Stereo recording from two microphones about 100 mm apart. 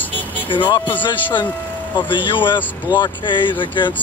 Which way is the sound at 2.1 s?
55° left (ahead or behind).